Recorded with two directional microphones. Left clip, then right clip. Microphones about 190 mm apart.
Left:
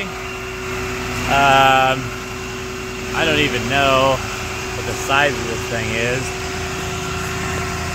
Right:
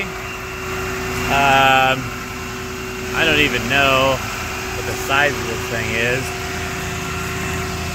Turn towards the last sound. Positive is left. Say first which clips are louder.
# right 1 dB
turn(degrees=5)  # may be behind; listen again after turning